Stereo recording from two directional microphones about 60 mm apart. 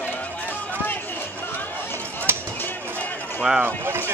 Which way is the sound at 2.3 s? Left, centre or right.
Right.